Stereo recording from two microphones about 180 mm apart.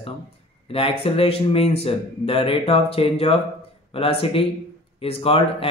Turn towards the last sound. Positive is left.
turn(degrees=30)  # may be behind; listen again after turning